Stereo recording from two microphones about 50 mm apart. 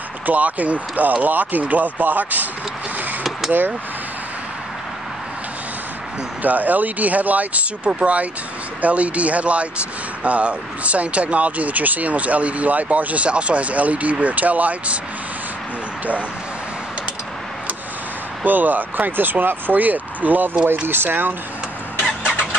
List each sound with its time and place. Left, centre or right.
0.3 s speech: right
3.3 s a sound: centre
6.4 s speech: right
18.4 s speech: right